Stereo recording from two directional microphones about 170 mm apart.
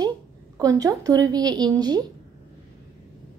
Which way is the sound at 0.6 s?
20° right (ahead or behind).